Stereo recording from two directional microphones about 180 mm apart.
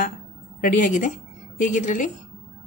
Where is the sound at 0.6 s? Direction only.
50° left (ahead or behind).